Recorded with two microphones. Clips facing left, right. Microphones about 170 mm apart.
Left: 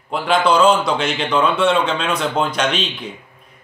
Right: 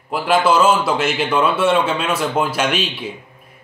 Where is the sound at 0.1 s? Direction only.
5° right (ahead or behind).